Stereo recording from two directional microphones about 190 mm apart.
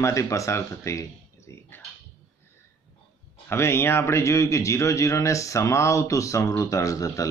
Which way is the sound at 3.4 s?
15° left (ahead or behind).